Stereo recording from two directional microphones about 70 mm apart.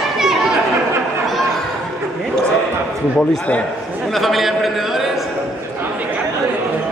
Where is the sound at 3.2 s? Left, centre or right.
Centre.